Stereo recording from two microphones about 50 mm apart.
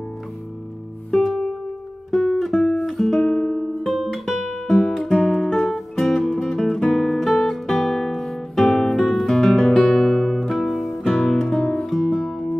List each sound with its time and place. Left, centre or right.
1.1 s music: centre
2.9 s guitar: centre
4.6 s guitar: centre
5.3 s music: centre
7.2 s guitar: centre
9.0 s music: centre
11.1 s guitar: centre
12.1 s music: centre